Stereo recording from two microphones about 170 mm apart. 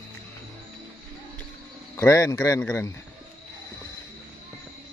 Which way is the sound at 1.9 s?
20° left (ahead or behind).